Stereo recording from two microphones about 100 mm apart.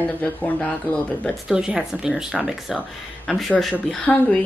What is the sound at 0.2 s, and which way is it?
Speech, 10° left (ahead or behind).